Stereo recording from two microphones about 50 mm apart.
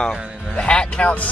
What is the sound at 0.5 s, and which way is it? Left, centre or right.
Speech, centre.